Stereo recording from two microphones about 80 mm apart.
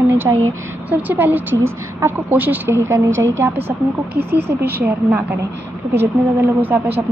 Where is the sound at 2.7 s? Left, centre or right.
Right.